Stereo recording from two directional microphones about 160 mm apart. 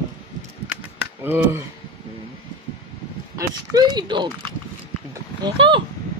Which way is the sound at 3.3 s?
25° right (ahead or behind).